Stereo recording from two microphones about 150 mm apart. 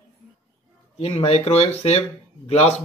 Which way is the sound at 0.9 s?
45° left (ahead or behind).